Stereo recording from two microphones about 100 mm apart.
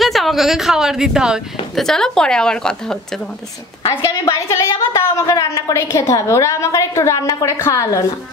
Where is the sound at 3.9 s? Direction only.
30° left (ahead or behind).